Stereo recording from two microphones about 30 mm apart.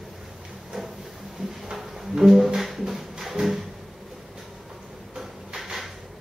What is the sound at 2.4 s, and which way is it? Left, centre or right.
Music, centre.